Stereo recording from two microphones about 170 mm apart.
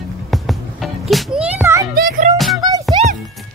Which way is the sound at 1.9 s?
60° right (ahead or behind).